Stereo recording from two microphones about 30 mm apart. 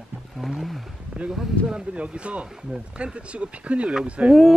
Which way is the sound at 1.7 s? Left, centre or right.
Right.